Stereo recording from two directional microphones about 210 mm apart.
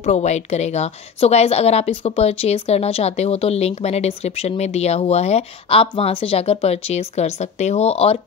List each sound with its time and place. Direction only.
0.0 s a woman's voice: 30° left (ahead or behind)